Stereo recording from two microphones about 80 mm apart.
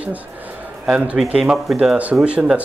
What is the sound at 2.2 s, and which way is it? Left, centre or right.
Speech, centre.